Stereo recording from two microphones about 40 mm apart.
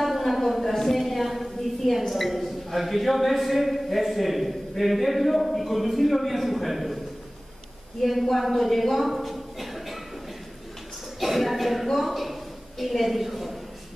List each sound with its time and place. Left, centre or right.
0.0 s a woman's voice: centre
8.0 s a woman's voice: centre
11.1 s speech: centre